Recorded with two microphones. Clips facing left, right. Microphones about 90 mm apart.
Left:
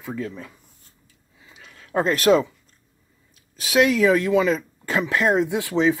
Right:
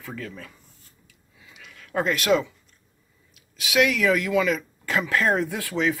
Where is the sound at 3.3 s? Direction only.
35° left (ahead or behind).